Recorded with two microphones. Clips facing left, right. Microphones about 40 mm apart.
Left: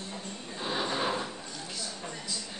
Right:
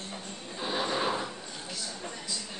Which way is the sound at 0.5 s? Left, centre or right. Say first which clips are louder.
Right 1 dB; centre.